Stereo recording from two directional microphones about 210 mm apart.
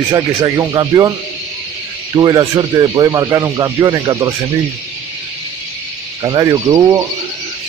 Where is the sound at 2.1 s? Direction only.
20° right (ahead or behind).